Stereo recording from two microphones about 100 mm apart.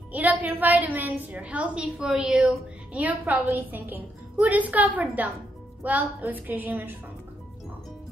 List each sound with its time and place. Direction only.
0.1 s a woman's voice: 15° right (ahead or behind)